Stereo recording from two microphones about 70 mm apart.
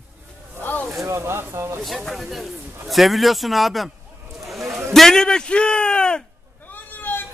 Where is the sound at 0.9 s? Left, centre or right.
Right.